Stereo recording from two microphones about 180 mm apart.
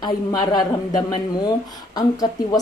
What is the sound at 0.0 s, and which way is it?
A woman's voice, 20° left (ahead or behind).